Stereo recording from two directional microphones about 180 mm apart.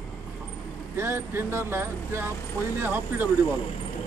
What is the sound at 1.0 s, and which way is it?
Speech, 15° right (ahead or behind).